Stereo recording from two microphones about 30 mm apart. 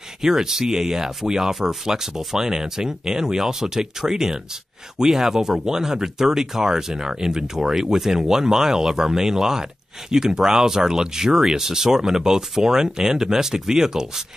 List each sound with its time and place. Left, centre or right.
0.2 s speech: centre